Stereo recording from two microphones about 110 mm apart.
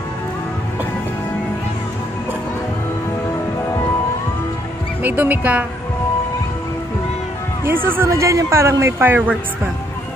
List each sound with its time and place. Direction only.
5.0 s speech: 20° right (ahead or behind)
7.6 s a man's voice: 20° right (ahead or behind)